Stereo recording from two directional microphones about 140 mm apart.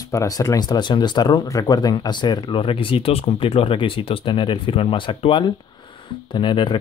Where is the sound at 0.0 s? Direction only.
25° left (ahead or behind).